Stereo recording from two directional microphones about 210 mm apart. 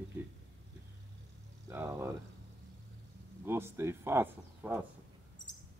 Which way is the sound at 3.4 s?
10° right (ahead or behind).